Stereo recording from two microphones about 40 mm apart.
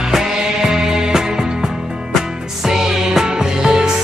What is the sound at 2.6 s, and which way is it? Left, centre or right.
Music, centre.